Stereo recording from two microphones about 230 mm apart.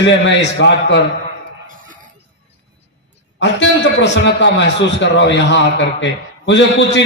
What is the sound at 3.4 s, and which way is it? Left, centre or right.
A man's voice, left.